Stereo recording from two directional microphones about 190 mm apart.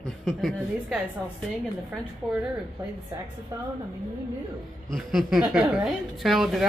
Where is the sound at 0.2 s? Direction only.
Centre (ahead or behind).